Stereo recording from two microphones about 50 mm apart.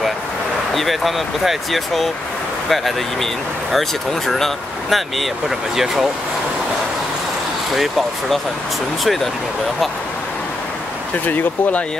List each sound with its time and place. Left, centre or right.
0.7 s speech: centre
7.7 s speech: centre
11.2 s speech: left